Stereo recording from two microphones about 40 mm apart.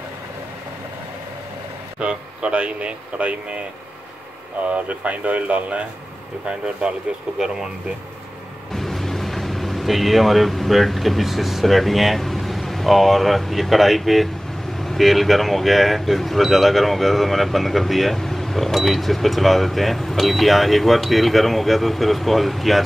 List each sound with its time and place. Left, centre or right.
2.0 s speech: right
4.6 s speech: right
6.4 s speech: right
8.7 s speech: centre
14.8 s vehicle: centre
15.0 s speech: centre